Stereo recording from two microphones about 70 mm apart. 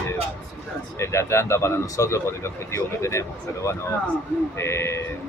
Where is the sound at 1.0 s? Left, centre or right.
Left.